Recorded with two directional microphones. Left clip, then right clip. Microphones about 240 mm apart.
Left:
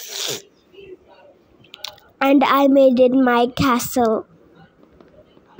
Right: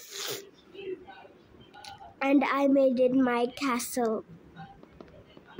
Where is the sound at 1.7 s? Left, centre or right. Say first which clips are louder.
Left 12 dB; left.